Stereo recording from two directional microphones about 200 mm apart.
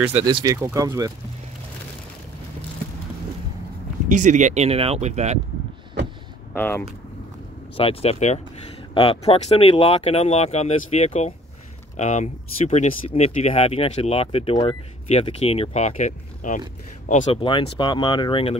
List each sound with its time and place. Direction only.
0.1 s speech: 25° right (ahead or behind)
4.1 s speech: 35° right (ahead or behind)
6.5 s speech: 10° left (ahead or behind)
7.7 s speech: 30° left (ahead or behind)